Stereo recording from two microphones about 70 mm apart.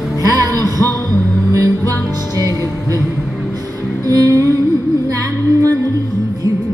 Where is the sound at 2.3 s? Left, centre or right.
Right.